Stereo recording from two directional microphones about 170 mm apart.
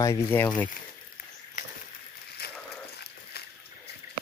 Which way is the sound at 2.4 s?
70° left (ahead or behind).